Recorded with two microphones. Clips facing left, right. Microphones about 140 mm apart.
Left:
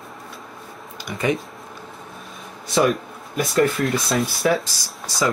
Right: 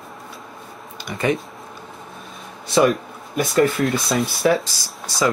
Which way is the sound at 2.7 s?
Centre (ahead or behind).